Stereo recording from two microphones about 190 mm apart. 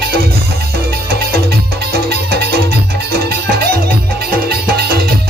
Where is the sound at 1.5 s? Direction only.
55° right (ahead or behind).